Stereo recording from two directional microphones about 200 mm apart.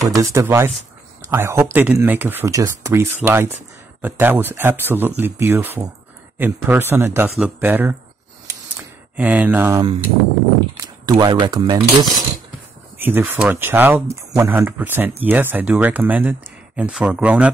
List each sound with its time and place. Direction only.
0.1 s speech: 15° right (ahead or behind)
9.1 s speech: 5° right (ahead or behind)
12.9 s speech: 10° right (ahead or behind)